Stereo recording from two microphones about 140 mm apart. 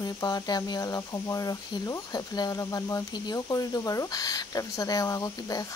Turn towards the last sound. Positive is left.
turn(degrees=25)  # may be behind; listen again after turning